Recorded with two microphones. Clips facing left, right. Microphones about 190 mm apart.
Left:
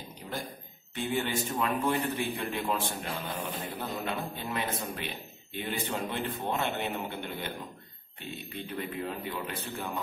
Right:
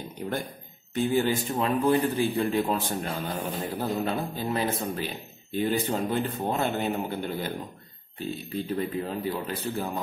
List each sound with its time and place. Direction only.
0.9 s a man's voice: 35° right (ahead or behind)